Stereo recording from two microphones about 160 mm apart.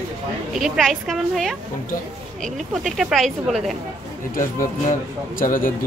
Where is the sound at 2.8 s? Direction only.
Centre (ahead or behind).